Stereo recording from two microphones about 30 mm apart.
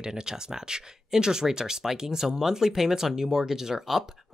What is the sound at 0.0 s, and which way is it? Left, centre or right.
Speech, right.